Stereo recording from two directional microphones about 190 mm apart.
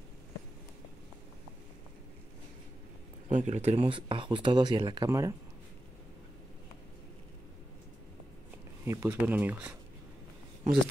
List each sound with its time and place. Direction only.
3.3 s speech: 40° right (ahead or behind); by 5.3 s 20° right (ahead or behind)
8.8 s speech: 15° right (ahead or behind)